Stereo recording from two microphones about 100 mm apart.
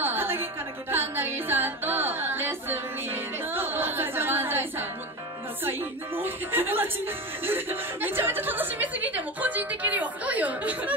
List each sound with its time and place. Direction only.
0.0 s music: 20° right (ahead or behind)
5.6 s a woman's voice: 20° right (ahead or behind)